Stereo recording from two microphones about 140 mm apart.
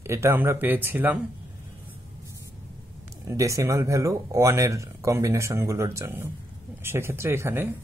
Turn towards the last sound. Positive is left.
turn(degrees=-15)  # may be behind; listen again after turning